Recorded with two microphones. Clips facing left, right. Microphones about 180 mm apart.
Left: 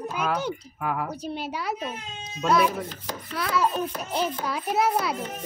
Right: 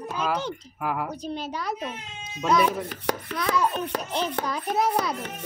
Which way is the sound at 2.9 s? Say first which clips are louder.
Right 7 dB; 70° right (ahead or behind).